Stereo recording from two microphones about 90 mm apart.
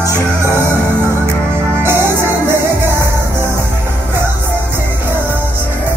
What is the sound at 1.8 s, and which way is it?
Music, 25° right (ahead or behind).